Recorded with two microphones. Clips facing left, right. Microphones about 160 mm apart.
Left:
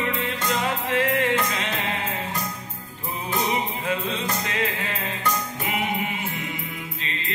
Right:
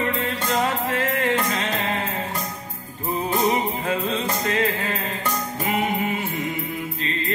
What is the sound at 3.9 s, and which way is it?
Music, 40° right (ahead or behind).